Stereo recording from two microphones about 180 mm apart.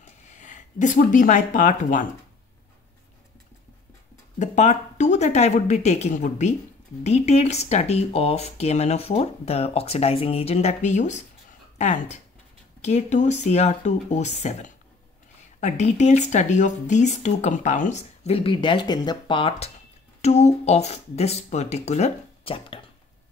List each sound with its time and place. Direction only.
0.0 s speech: 45° left (ahead or behind)
4.4 s speech: 40° left (ahead or behind)